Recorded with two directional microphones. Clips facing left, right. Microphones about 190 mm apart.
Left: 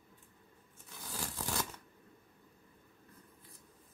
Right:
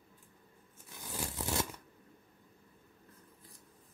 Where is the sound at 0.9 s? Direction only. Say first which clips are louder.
Right 3 dB; 20° right (ahead or behind).